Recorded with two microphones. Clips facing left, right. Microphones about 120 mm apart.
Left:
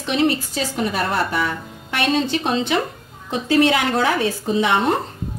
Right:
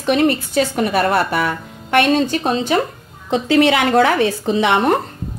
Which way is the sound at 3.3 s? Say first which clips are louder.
Right 3 dB; 75° right (ahead or behind).